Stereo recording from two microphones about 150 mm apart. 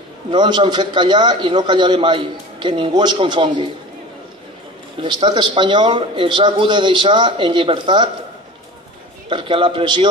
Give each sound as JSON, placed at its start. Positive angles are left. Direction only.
{"t": 0.3, "sound": "a man's voice", "side_deg": -30}
{"t": 5.0, "sound": "a man's voice", "side_deg": -30}
{"t": 9.3, "sound": "a man's voice", "side_deg": -35}